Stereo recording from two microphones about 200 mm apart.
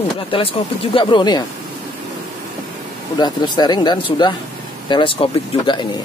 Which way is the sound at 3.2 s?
20° left (ahead or behind).